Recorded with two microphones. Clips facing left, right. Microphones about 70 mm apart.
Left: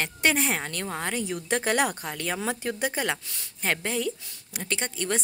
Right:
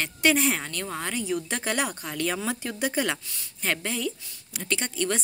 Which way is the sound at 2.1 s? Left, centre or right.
Left.